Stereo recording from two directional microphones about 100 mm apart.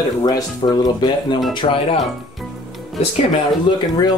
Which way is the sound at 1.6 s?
75° left (ahead or behind).